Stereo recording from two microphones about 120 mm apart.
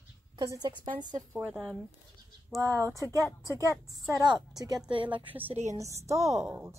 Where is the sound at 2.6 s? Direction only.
25° right (ahead or behind).